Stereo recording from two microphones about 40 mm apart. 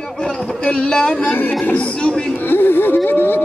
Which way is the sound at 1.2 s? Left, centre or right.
Left.